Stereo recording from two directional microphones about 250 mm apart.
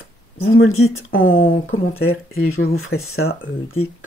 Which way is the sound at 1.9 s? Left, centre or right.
Left.